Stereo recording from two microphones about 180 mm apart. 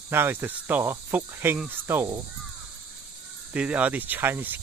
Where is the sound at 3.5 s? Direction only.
5° right (ahead or behind).